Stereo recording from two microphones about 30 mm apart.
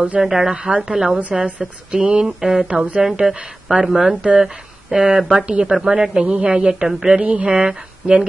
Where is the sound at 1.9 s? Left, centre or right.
Right.